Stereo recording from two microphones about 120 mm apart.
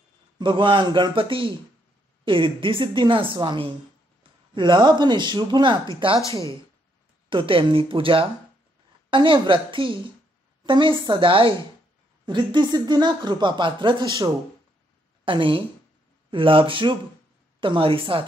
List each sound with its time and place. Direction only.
0.4 s a woman's voice: 40° right (ahead or behind)
7.2 s a woman's voice: 45° right (ahead or behind)
15.2 s a woman's voice: 45° right (ahead or behind)